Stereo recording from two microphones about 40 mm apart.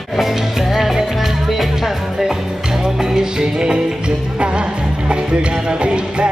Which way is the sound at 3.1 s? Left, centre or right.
Right.